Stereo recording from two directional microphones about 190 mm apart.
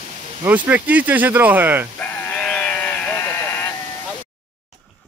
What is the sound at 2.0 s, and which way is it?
Sheep, 10° left (ahead or behind).